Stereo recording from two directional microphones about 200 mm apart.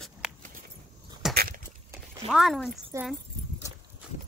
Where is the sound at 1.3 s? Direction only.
45° right (ahead or behind).